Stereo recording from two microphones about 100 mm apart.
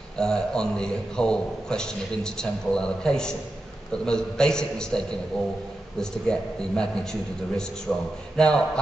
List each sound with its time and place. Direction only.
0.2 s a man's voice: 5° left (ahead or behind)